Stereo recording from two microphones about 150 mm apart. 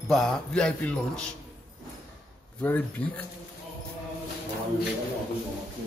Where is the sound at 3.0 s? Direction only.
10° left (ahead or behind).